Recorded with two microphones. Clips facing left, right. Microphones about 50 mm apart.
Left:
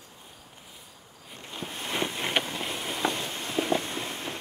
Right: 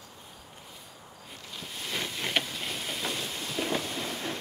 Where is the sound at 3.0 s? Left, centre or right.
Left.